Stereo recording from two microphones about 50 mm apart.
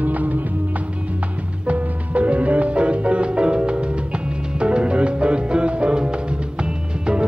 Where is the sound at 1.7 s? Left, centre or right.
Right.